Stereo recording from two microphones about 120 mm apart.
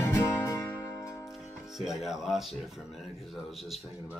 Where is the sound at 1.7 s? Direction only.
Centre (ahead or behind).